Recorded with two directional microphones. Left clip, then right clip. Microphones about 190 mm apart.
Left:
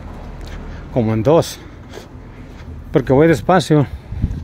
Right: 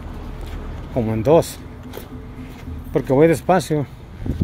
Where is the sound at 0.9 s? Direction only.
25° left (ahead or behind).